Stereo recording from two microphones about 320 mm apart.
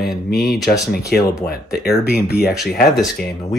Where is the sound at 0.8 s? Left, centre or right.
Left.